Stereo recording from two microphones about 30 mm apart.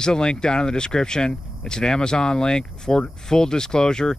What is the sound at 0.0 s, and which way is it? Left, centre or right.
Speech, left.